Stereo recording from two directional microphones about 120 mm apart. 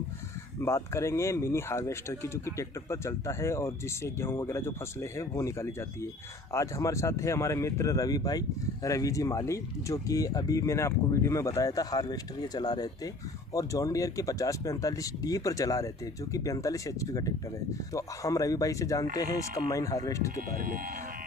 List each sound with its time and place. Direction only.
0.6 s speech: 25° left (ahead or behind)